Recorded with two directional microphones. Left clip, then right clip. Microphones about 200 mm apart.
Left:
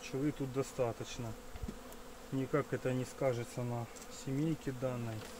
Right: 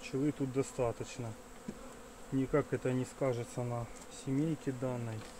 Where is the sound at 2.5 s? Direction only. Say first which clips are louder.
Right 2 dB; 15° right (ahead or behind).